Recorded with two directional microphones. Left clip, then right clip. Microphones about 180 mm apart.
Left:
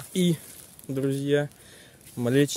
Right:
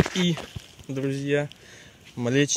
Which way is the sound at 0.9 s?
20° left (ahead or behind).